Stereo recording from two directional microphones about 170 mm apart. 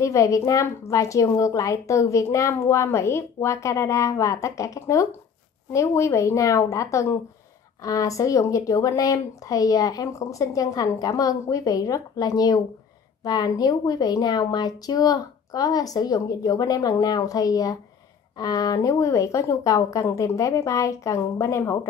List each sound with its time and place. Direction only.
0.0 s a woman's voice: 20° left (ahead or behind)